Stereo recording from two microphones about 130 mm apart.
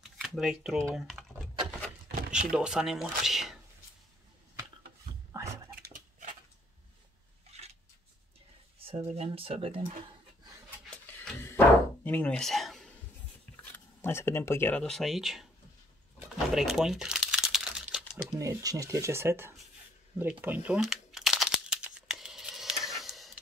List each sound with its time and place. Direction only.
0.0 s speech: 5° right (ahead or behind)
0.9 s typing: centre (ahead or behind)
2.1 s chopping: 75° right (ahead or behind)
2.5 s speech: 5° right (ahead or behind)
7.5 s a sound: 55° right (ahead or behind)
8.7 s speech: 45° right (ahead or behind)
11.1 s bow-wow: 15° left (ahead or behind)
14.0 s speech: 20° left (ahead or behind)
14.8 s speech: centre (ahead or behind)
16.2 s crumpling: 5° right (ahead or behind)
18.4 s speech: 25° right (ahead or behind); by 20.8 s 10° right (ahead or behind)
20.8 s crumpling: 5° right (ahead or behind)